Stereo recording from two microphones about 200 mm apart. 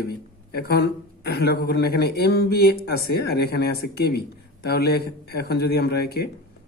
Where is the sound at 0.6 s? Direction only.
50° left (ahead or behind).